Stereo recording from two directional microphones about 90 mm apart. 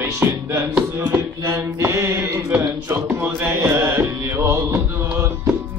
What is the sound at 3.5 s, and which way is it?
Music, 30° right (ahead or behind).